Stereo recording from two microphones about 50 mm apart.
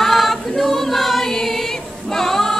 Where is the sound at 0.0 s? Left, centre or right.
Centre.